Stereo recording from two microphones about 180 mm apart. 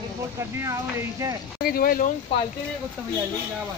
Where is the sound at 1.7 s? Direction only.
55° left (ahead or behind).